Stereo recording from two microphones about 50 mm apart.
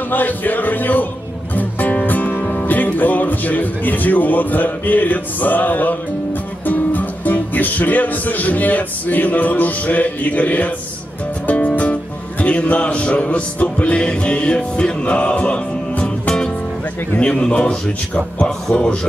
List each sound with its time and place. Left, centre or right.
0.1 s speech: left
1.5 s music: left
2.0 s speech: left
6.6 s music: left
17.2 s a man's voice: centre